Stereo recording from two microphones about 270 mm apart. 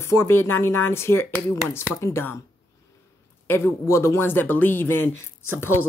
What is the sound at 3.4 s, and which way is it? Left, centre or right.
A woman's voice, centre.